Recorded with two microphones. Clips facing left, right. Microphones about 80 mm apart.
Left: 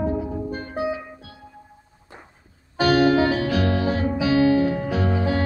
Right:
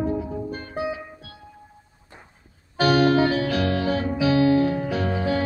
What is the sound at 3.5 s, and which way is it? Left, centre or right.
Music, left.